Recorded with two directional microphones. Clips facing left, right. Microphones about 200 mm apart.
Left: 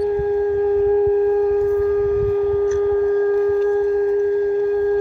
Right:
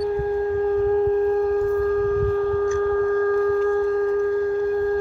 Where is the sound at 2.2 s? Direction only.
15° left (ahead or behind).